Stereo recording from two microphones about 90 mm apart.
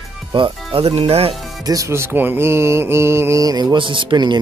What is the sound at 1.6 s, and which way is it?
Music, 40° right (ahead or behind).